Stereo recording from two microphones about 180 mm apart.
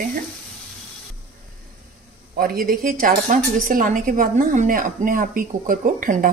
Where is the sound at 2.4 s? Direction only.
55° right (ahead or behind).